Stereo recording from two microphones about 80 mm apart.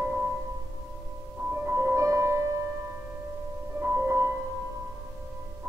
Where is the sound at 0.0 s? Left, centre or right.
Right.